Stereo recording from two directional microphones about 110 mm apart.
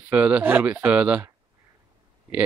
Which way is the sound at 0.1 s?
10° right (ahead or behind).